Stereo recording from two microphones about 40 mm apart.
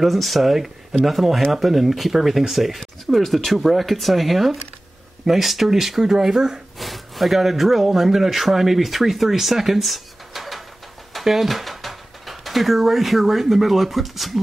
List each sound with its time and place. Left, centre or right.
0.0 s speech: centre
3.5 s speech: centre
6.8 s speech: centre